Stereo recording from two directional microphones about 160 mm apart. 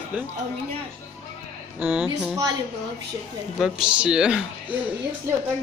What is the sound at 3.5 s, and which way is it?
Speech, 5° right (ahead or behind).